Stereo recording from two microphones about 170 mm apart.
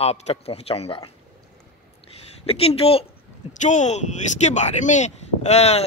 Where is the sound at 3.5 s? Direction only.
45° left (ahead or behind).